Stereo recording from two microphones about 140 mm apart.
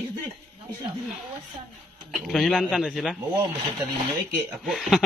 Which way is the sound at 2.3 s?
Centre (ahead or behind).